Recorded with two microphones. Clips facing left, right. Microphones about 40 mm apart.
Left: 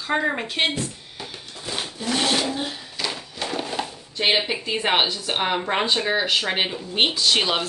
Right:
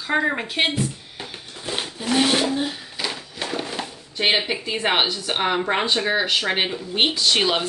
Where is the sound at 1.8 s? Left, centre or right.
Centre.